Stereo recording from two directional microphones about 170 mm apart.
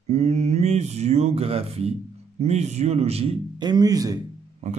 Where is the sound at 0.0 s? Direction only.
40° right (ahead or behind); by 4.2 s 20° right (ahead or behind).